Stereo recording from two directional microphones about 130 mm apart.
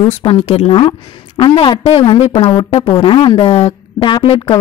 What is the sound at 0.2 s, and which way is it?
A woman's voice, 45° left (ahead or behind).